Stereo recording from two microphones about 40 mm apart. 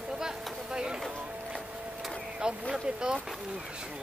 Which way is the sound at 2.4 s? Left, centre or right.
Centre.